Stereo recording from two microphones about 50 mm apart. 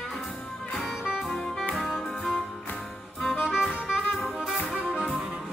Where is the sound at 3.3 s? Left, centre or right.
Centre.